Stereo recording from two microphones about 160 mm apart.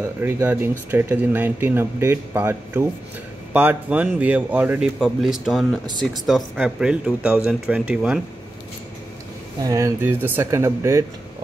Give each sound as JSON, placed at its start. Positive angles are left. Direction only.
{"t": 0.2, "sound": "speech", "side_deg": -15}
{"t": 9.6, "sound": "speech", "side_deg": -20}